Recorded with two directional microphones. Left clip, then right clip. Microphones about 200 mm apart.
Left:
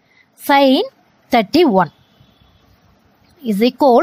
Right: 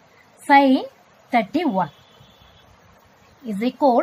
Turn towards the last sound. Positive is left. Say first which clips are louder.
# left 7 dB
turn(degrees=45)  # may be behind; listen again after turning